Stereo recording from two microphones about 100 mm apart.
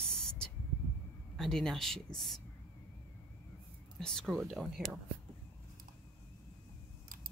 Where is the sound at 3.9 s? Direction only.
5° left (ahead or behind).